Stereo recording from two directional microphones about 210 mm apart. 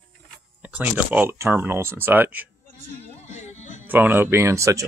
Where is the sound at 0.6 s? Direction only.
5° right (ahead or behind).